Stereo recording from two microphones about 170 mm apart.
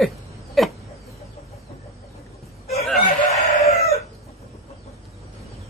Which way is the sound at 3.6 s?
40° left (ahead or behind).